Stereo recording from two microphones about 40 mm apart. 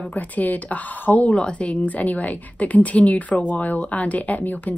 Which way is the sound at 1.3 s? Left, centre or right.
Left.